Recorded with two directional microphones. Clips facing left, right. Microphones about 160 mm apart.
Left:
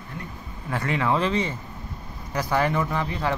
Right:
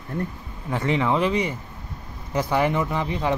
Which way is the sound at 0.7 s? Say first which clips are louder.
Right 2 dB; 20° right (ahead or behind).